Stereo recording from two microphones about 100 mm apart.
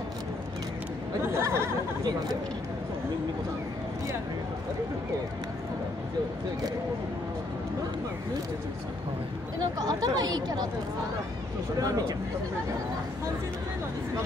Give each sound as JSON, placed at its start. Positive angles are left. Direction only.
{"t": 1.2, "sound": "speech", "side_deg": -25}
{"t": 9.6, "sound": "speech", "side_deg": -40}
{"t": 11.8, "sound": "speech", "side_deg": -35}